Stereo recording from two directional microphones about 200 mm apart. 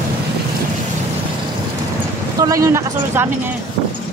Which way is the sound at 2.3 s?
15° right (ahead or behind).